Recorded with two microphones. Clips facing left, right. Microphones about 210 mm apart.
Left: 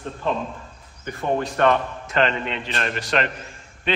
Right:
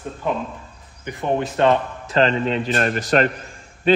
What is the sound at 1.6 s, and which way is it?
A man's voice, 30° right (ahead or behind).